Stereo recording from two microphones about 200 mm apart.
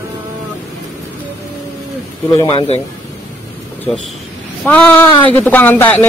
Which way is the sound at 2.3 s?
15° left (ahead or behind).